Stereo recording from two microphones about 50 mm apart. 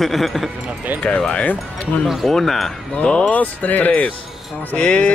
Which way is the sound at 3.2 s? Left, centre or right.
Left.